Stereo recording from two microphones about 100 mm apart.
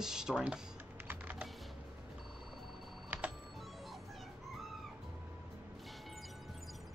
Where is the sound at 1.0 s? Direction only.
20° right (ahead or behind).